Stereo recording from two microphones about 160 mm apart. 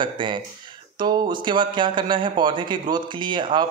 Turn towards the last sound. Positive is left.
turn(degrees=-30)  # may be behind; listen again after turning